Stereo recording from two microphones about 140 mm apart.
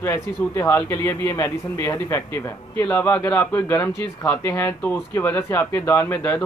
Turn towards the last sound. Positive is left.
turn(degrees=15)  # may be behind; listen again after turning